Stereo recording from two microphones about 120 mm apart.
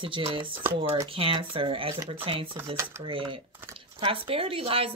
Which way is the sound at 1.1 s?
50° right (ahead or behind).